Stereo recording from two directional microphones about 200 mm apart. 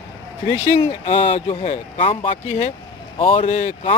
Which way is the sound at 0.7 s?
30° left (ahead or behind).